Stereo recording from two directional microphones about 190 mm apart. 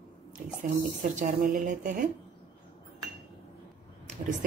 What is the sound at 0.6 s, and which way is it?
Speech, 45° right (ahead or behind).